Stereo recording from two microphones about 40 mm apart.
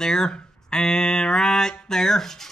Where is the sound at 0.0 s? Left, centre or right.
Centre.